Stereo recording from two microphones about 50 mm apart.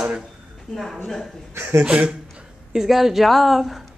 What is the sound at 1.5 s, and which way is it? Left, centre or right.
Speech, right.